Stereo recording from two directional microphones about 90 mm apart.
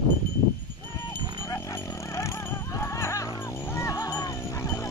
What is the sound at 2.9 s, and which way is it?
Music, 30° left (ahead or behind).